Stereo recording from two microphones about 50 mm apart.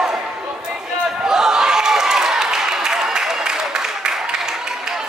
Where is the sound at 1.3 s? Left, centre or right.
Centre.